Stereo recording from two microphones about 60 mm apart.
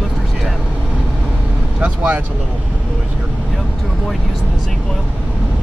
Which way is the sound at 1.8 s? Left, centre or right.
Right.